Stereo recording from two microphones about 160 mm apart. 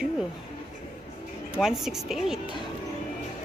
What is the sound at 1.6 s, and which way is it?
Speech, centre (ahead or behind).